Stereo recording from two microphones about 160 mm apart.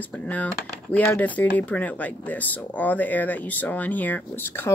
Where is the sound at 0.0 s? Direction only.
10° left (ahead or behind).